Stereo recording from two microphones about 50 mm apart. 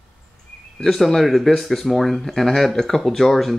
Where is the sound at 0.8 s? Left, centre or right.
Centre.